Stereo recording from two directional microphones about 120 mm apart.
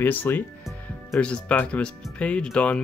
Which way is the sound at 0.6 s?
5° left (ahead or behind).